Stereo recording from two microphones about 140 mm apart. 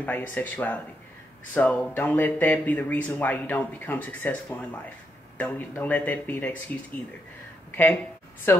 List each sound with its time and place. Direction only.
0.0 s speech: 10° left (ahead or behind)
7.7 s speech: 15° left (ahead or behind)